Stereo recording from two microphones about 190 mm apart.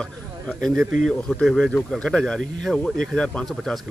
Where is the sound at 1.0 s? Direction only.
5° left (ahead or behind).